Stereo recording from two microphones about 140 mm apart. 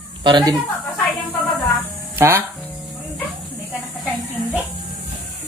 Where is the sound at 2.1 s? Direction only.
20° right (ahead or behind).